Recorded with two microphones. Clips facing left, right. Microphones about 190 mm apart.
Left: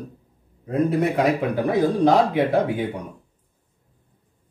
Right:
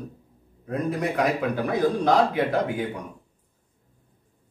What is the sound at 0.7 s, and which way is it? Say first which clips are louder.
Speech: left 6 dB; 25° left (ahead or behind).